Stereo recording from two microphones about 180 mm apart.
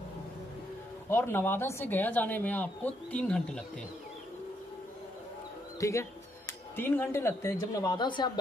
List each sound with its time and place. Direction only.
1.0 s speech: 15° left (ahead or behind)
5.8 s speech: 15° left (ahead or behind)